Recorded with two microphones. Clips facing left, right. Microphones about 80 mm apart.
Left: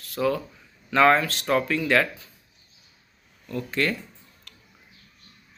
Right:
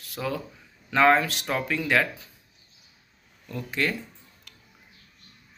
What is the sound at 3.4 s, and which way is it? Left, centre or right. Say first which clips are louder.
Speech: left 2 dB; centre.